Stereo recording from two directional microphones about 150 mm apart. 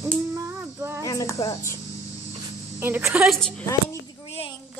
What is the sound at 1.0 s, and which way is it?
Speech, 25° left (ahead or behind).